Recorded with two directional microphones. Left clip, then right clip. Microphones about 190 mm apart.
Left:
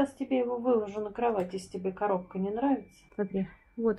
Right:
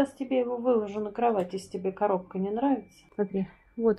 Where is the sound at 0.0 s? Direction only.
15° right (ahead or behind).